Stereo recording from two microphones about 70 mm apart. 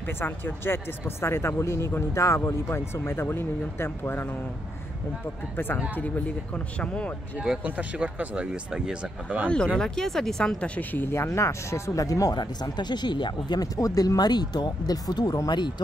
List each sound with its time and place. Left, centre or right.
0.0 s speech: left
5.9 s speech: left
7.3 s speech: centre
7.6 s speech: right
8.7 s speech: centre
9.5 s speech: centre
10.8 s speech: left
11.1 s speech: left
12.4 s speech: left
13.7 s speech: left
15.4 s speech: left